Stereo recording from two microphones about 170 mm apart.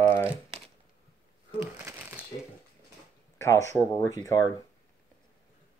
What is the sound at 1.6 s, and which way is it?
Crumpling, 15° right (ahead or behind).